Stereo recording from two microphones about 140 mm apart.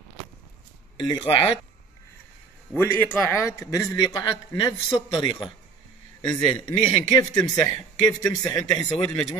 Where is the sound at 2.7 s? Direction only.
15° left (ahead or behind).